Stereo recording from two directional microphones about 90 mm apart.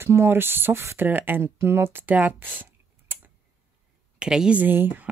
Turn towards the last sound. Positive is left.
turn(degrees=-25)  # may be behind; listen again after turning